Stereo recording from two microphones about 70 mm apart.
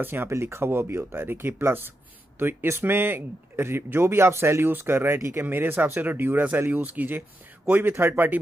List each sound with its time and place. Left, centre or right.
0.0 s speech: right